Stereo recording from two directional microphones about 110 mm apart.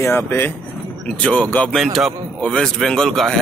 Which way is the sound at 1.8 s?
Centre (ahead or behind).